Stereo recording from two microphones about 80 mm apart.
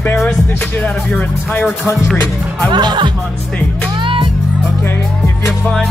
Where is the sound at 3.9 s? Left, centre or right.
Right.